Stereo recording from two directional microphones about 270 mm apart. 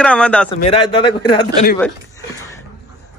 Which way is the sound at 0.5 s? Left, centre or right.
Left.